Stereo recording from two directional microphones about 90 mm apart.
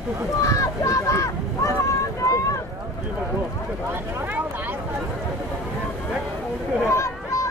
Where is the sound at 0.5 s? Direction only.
35° left (ahead or behind).